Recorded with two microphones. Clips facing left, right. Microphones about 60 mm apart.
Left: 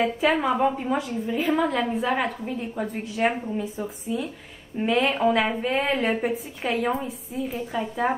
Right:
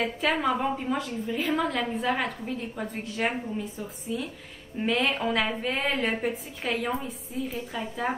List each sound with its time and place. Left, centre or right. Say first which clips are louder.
0.0 s a woman's voice: left 4 dB; centre